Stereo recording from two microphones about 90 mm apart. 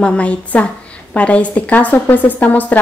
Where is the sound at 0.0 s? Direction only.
15° left (ahead or behind).